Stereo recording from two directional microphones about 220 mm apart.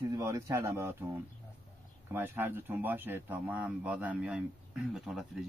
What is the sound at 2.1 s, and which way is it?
A man's voice, 10° right (ahead or behind).